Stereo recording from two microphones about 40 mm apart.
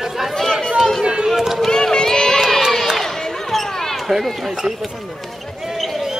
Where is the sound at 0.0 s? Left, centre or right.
Centre.